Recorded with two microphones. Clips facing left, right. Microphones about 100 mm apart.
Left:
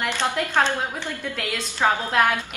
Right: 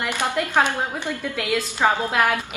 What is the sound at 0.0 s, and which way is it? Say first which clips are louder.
A woman's voice: right 1 dB; 10° right (ahead or behind).